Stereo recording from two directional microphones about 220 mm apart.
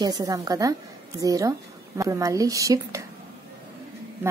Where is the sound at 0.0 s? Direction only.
15° right (ahead or behind).